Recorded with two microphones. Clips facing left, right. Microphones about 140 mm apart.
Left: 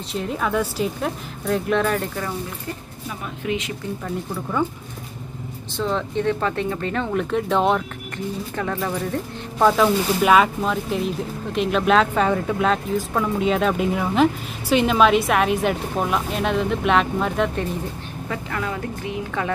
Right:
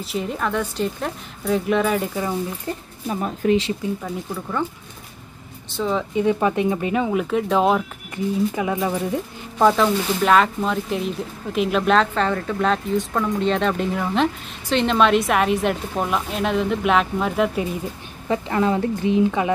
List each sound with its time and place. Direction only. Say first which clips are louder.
0.1 s speech: left 1 dB; centre (ahead or behind)
3.1 s speech: right 7 dB; 40° right (ahead or behind)
5.7 s speech: right 1 dB; 5° right (ahead or behind)
9.6 s speech: even; centre (ahead or behind)
18.3 s speech: right 8 dB; 25° right (ahead or behind)